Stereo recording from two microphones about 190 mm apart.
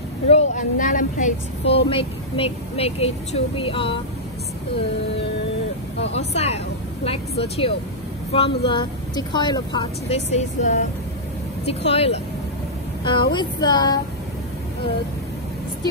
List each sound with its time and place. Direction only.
0.3 s speech: 40° left (ahead or behind)
1.6 s speech: 65° left (ahead or behind)
1.9 s a woman's voice: 30° left (ahead or behind)
6.1 s a woman's voice: 35° left (ahead or behind)